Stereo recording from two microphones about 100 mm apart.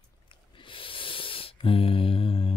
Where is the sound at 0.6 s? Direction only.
60° left (ahead or behind).